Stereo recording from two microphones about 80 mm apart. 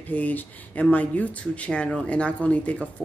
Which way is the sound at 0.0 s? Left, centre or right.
Left.